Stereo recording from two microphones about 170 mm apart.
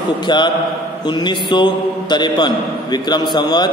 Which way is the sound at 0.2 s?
25° left (ahead or behind).